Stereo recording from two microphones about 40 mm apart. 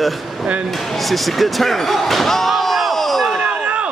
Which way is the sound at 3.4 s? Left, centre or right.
Right.